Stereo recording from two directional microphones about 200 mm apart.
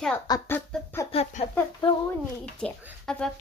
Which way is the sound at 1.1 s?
30° left (ahead or behind).